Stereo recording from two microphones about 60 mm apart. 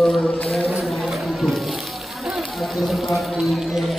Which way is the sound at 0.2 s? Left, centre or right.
Centre.